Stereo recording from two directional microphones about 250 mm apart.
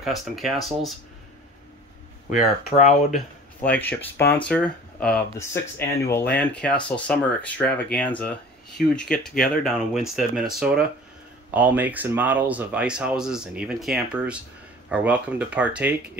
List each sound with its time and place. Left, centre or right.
0.0 s speech: centre
2.3 s speech: left
3.6 s speech: centre